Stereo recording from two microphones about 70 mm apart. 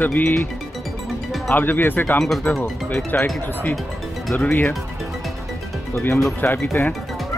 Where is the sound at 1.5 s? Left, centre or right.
Left.